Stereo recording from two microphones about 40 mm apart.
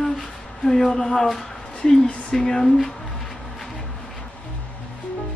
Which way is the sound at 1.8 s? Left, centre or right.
Centre.